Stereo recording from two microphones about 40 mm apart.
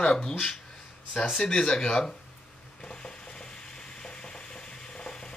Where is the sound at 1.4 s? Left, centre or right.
Centre.